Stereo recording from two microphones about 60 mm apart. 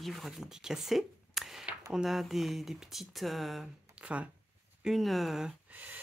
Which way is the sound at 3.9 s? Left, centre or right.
Right.